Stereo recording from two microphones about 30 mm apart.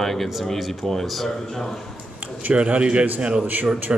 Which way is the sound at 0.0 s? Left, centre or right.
Centre.